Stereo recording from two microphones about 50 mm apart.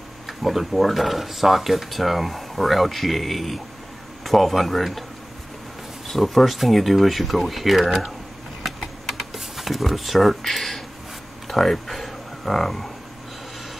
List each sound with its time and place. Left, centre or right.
0.3 s speech: centre
6.0 s speech: centre
8.6 s computer keyboard: centre
11.4 s a sound: centre